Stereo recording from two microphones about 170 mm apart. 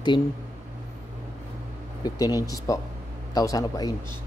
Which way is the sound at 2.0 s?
20° left (ahead or behind).